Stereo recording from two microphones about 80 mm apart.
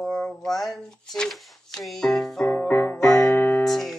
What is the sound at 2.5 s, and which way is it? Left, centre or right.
Music, left.